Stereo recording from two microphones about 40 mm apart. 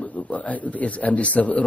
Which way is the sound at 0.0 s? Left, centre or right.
Left.